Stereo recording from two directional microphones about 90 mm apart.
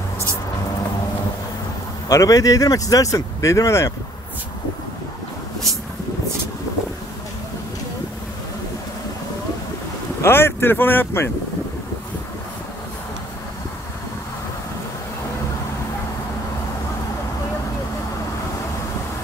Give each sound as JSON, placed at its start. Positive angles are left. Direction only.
{"t": 2.0, "sound": "speech", "side_deg": 40}
{"t": 10.2, "sound": "speech", "side_deg": 25}